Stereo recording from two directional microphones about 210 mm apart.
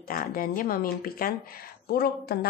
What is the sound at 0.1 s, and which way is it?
A woman's voice, 45° left (ahead or behind).